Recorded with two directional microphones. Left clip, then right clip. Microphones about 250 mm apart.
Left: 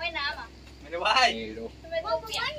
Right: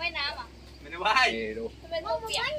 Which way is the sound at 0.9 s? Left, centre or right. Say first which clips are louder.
Left 1 dB; left.